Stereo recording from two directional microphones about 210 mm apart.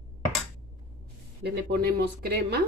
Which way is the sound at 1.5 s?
50° right (ahead or behind).